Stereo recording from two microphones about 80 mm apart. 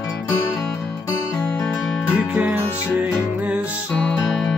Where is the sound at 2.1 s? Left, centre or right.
Centre.